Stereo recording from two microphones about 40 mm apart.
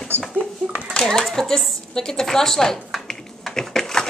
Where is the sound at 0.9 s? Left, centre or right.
Centre.